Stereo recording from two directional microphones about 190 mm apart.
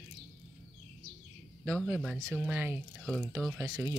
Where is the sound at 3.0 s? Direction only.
5° left (ahead or behind).